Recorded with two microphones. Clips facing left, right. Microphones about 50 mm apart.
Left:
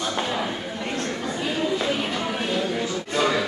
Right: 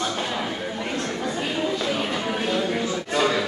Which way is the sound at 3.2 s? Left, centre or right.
Centre.